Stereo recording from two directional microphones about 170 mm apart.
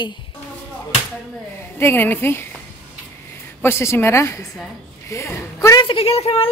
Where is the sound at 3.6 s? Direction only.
15° left (ahead or behind).